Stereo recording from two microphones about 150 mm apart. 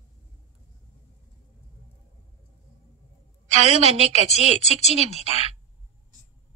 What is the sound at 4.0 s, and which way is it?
A woman's voice, 45° left (ahead or behind).